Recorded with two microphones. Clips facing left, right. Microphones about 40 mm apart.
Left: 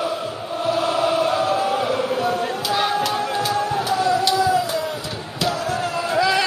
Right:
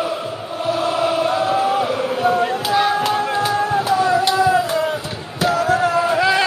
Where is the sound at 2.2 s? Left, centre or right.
Right.